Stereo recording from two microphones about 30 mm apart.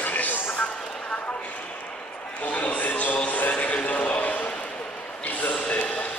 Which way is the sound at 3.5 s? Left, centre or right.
Left.